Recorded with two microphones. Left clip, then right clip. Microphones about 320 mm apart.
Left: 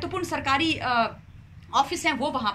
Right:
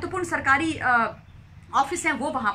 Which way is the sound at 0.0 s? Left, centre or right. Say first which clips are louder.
Right 3 dB; centre.